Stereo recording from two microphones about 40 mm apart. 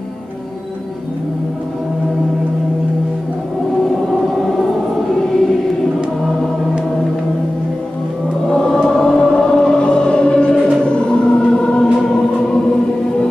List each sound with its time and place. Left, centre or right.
3.9 s a sound: centre
5.1 s choir: centre
8.5 s choir: centre
8.7 s music: centre; by 11.2 s left
11.2 s music: centre